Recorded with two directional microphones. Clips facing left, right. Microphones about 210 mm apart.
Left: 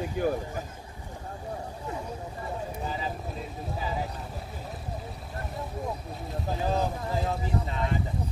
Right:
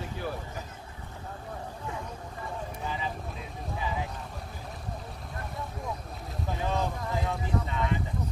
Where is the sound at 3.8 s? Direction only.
40° left (ahead or behind).